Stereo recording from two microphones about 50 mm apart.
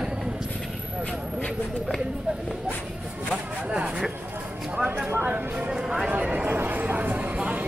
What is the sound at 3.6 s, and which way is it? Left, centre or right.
Speech, right.